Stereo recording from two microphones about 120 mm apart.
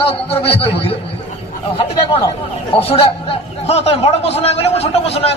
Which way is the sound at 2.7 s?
55° left (ahead or behind).